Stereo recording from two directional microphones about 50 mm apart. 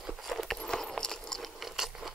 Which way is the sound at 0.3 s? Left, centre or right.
Centre.